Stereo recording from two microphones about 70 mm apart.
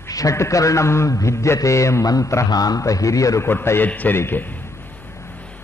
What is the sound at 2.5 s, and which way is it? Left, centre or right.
Speech, left.